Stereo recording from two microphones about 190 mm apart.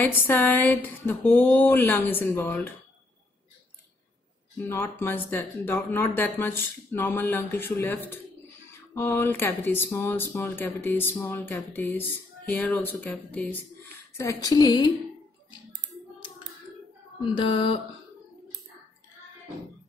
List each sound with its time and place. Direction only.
0.0 s speech: 10° left (ahead or behind)
4.6 s a woman's voice: 15° left (ahead or behind)
17.2 s a woman's voice: 25° left (ahead or behind)